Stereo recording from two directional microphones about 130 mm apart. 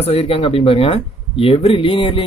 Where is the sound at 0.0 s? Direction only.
55° left (ahead or behind).